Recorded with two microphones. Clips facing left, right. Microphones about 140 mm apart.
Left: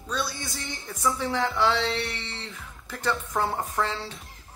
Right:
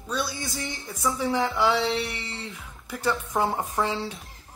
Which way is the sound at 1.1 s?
15° right (ahead or behind).